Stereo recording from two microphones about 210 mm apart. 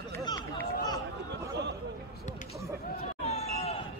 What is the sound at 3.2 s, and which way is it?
Basketball bounce, 30° left (ahead or behind).